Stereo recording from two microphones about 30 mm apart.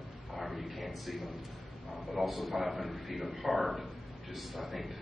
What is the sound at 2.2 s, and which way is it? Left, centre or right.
A man's voice, centre.